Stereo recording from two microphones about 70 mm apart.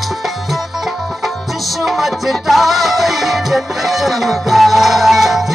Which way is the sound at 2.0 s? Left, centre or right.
Centre.